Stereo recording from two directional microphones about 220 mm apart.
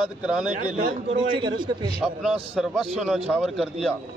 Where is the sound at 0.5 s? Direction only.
35° right (ahead or behind).